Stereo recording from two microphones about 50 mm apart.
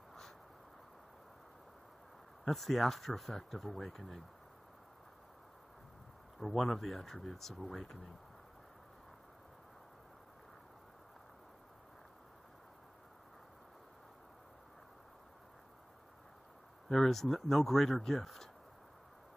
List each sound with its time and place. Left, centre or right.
2.4 s speech: centre
6.4 s speech: centre
16.9 s speech: centre